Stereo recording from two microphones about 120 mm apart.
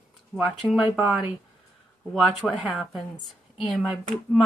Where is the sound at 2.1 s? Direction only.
Centre (ahead or behind).